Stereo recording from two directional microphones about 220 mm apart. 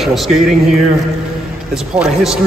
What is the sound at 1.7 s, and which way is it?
Speech, 5° right (ahead or behind).